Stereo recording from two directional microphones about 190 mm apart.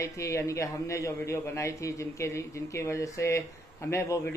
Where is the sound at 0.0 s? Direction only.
15° left (ahead or behind).